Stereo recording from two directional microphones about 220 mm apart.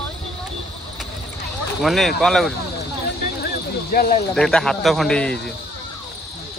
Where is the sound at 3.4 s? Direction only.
45° left (ahead or behind).